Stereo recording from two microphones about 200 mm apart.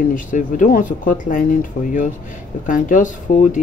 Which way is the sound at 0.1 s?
40° left (ahead or behind).